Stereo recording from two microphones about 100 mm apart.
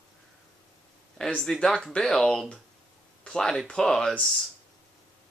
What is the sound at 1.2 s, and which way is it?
Speech, 5° left (ahead or behind).